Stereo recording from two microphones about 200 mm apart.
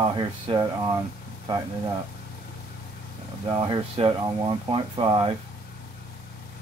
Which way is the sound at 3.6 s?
25° right (ahead or behind).